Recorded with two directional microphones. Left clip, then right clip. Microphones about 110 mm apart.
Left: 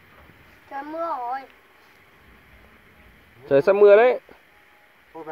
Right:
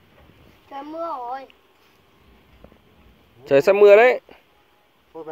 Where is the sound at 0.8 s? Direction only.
15° left (ahead or behind).